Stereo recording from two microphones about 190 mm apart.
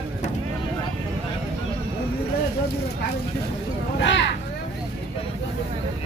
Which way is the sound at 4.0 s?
70° left (ahead or behind).